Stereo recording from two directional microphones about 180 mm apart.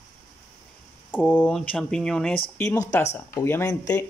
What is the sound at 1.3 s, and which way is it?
Speech, 10° left (ahead or behind).